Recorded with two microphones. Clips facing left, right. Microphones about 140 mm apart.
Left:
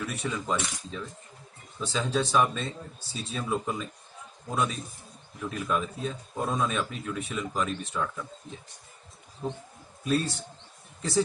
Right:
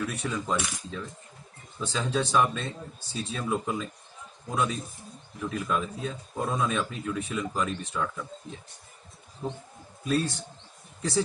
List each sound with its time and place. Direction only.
0.0 s speech: 5° left (ahead or behind)
10.0 s speech: centre (ahead or behind)